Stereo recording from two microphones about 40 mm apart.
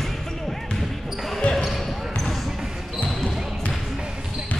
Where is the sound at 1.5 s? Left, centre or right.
Left.